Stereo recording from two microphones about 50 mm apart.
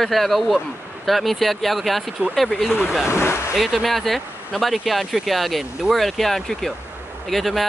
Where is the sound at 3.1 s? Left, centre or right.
Left.